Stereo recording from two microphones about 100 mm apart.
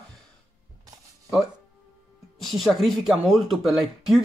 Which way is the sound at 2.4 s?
Centre (ahead or behind).